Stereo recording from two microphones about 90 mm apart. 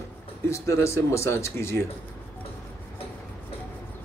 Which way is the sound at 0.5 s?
30° left (ahead or behind).